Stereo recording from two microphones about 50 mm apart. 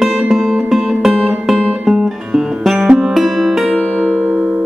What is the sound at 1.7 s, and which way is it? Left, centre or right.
Guitar, centre.